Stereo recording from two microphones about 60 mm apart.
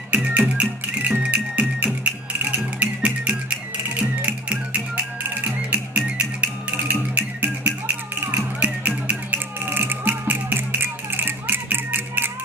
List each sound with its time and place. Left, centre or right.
0.1 s music: right
6.9 s music: right